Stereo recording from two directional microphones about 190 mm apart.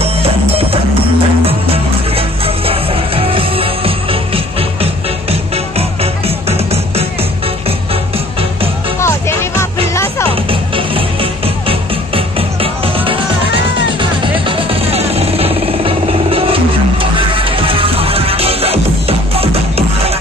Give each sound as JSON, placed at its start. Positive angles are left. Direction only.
{"t": 0.0, "sound": "music", "side_deg": -30}
{"t": 9.0, "sound": "music", "side_deg": 15}
{"t": 10.5, "sound": "music", "side_deg": -30}
{"t": 14.2, "sound": "music", "side_deg": -25}